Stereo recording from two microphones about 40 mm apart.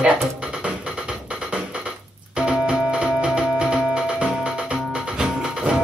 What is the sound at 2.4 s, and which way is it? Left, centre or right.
Music, right.